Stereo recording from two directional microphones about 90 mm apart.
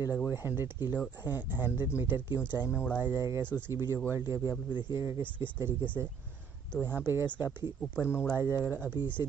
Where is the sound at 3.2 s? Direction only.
35° right (ahead or behind).